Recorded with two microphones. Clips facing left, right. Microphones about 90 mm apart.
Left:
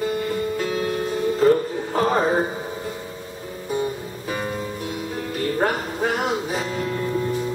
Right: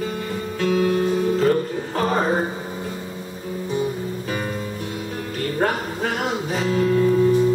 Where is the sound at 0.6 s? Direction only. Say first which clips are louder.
Right 5 dB; 10° left (ahead or behind).